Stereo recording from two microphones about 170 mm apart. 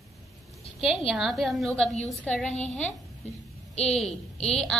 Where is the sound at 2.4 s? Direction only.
45° left (ahead or behind).